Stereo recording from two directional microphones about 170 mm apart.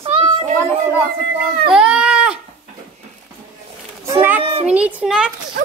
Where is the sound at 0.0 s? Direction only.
35° right (ahead or behind).